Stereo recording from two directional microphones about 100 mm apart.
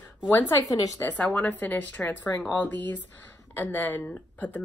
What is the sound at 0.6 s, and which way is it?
Speech, 35° left (ahead or behind).